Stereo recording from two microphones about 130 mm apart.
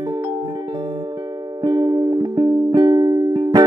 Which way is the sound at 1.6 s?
35° right (ahead or behind).